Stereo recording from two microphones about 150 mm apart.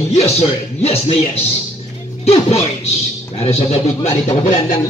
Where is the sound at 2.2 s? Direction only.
45° left (ahead or behind).